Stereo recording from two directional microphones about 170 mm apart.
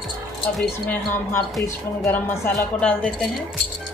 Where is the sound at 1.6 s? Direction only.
10° left (ahead or behind).